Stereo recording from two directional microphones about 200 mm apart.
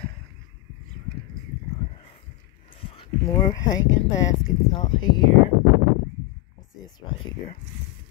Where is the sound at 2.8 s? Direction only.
30° left (ahead or behind).